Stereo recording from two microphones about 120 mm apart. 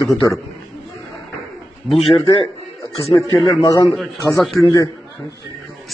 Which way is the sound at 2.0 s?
55° left (ahead or behind).